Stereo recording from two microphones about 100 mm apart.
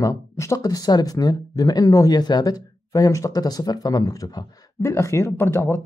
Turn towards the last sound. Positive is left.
turn(degrees=20)  # may be behind; listen again after turning